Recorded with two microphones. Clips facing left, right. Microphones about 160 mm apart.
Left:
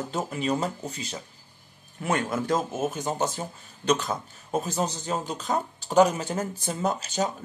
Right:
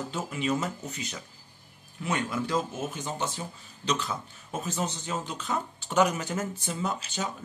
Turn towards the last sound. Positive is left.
turn(degrees=40)  # may be behind; listen again after turning